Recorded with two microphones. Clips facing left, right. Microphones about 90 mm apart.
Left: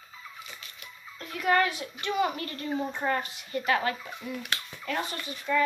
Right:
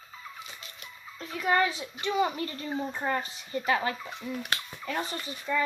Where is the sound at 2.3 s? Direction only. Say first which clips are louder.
Even; 20° right (ahead or behind).